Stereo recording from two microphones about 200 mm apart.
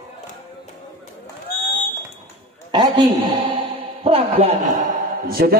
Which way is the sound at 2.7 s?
20° right (ahead or behind).